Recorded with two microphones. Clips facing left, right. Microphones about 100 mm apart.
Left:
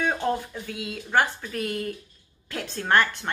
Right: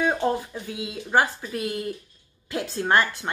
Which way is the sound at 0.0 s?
20° right (ahead or behind).